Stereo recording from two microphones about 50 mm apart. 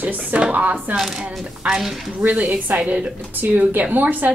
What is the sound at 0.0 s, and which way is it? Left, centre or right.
Speech, right.